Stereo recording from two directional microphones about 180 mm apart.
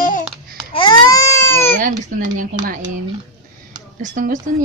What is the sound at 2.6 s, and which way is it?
Speech, 50° right (ahead or behind).